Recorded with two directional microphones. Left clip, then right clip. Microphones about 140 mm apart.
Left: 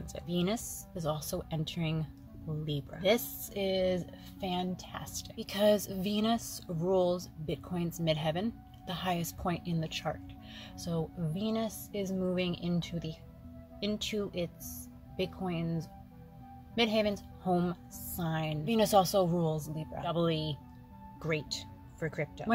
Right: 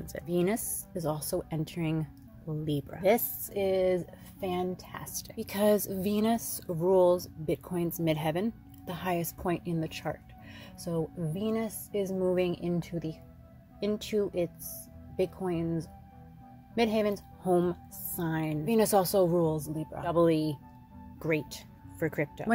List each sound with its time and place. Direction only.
0.0 s speech: 40° right (ahead or behind)